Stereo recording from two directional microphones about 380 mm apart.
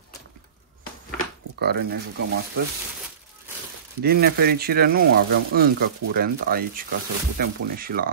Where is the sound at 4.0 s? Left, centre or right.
Right.